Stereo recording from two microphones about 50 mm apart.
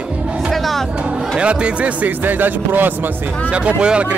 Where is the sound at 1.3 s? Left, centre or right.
Right.